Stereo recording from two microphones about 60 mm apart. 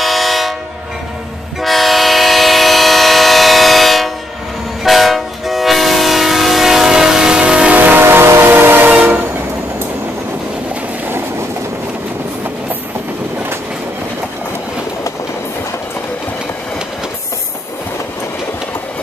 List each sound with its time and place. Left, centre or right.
0.0 s train: centre
1.6 s train: centre; by 8.8 s right
8.8 s train: right